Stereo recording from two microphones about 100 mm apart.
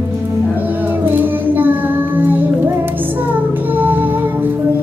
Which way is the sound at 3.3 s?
20° right (ahead or behind).